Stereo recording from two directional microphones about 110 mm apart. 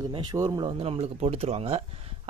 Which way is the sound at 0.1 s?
40° right (ahead or behind).